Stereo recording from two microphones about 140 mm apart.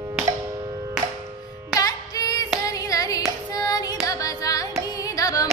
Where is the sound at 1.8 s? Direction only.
25° left (ahead or behind).